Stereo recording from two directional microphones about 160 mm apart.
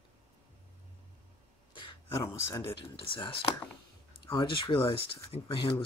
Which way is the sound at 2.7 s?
30° left (ahead or behind).